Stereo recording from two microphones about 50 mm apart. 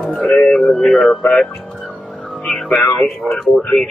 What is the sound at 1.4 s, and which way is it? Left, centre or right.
Music, centre.